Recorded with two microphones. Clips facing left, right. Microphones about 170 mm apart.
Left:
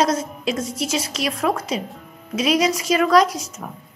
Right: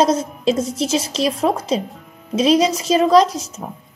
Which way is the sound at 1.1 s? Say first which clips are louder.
Right 4 dB; 25° right (ahead or behind).